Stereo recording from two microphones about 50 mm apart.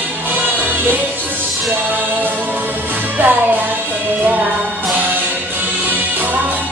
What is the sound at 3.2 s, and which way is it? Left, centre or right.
Music, right.